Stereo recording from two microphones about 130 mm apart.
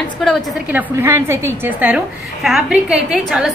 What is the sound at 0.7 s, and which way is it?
A woman's voice, 20° right (ahead or behind).